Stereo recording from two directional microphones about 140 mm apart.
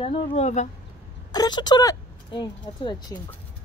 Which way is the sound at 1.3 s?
30° left (ahead or behind).